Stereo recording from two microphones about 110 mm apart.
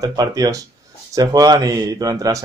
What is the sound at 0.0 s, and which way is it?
Speech, 35° right (ahead or behind).